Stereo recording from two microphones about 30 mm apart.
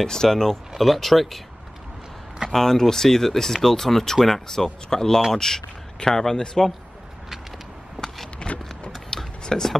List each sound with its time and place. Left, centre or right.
0.0 s speech: centre
0.7 s speech: centre
2.5 s speech: centre
8.4 s vehicle: left
9.1 s a sound: centre